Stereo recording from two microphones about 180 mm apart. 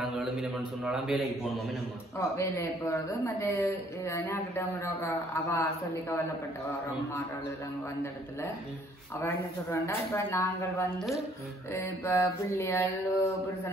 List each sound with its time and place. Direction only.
0.0 s a man's voice: centre (ahead or behind)
2.1 s a man's voice: 15° left (ahead or behind)
9.2 s a man's voice: 15° left (ahead or behind)